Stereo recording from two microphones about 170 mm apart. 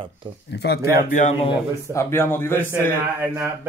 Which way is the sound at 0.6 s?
70° left (ahead or behind).